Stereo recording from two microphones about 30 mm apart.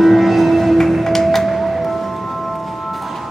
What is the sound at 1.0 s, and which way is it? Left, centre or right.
Music, centre.